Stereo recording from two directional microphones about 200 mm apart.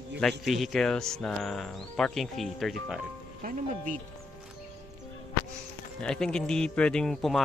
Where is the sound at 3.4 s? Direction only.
40° right (ahead or behind).